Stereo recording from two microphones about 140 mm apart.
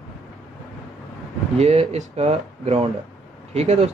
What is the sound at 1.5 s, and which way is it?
Speech, 50° right (ahead or behind).